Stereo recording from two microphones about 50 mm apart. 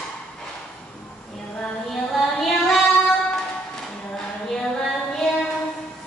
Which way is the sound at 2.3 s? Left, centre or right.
Centre.